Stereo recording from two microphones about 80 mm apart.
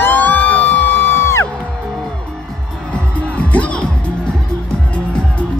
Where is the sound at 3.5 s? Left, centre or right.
Centre.